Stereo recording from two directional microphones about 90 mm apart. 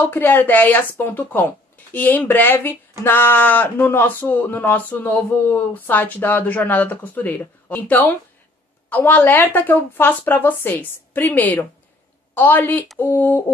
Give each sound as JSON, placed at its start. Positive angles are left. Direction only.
{"t": 0.0, "sound": "speech", "side_deg": 20}